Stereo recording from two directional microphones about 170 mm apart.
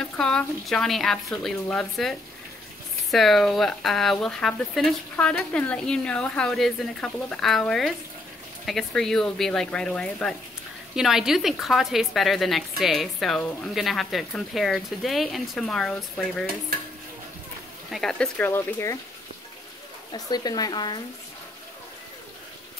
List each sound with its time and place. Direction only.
0.0 s speech: 5° left (ahead or behind)
17.9 s speech: 5° left (ahead or behind)
20.1 s speech: 25° left (ahead or behind)